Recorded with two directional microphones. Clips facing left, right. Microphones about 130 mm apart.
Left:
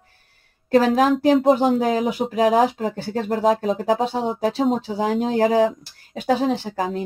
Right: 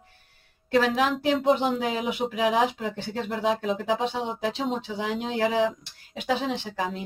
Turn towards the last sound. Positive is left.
turn(degrees=40)  # may be behind; listen again after turning